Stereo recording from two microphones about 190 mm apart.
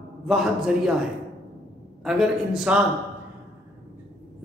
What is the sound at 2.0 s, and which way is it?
Speech, 5° right (ahead or behind).